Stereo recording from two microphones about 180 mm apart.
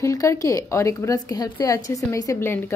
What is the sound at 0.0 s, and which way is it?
A woman's voice, 15° left (ahead or behind).